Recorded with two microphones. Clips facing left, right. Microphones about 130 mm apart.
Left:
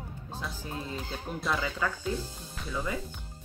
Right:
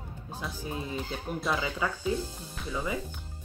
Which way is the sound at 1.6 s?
15° right (ahead or behind).